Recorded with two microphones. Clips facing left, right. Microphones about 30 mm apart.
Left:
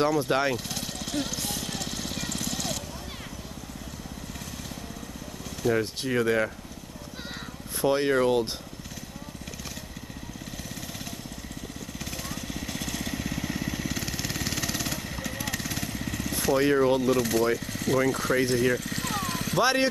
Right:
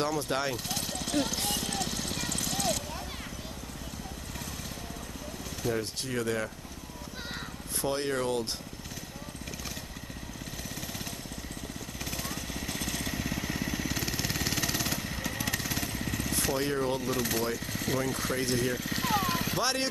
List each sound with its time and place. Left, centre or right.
0.0 s speech: centre
0.7 s jackhammer: centre
1.5 s vehicle: centre
5.7 s speech: left
7.8 s speech: centre
12.0 s vehicle: centre
16.7 s speech: centre
17.0 s speech: centre
19.6 s speech: centre